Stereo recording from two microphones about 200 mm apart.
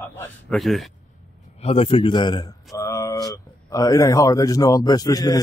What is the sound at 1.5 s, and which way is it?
A man's voice, 30° left (ahead or behind).